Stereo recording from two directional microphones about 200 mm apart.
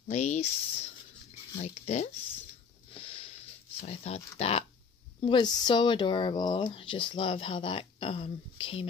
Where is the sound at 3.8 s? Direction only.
30° left (ahead or behind).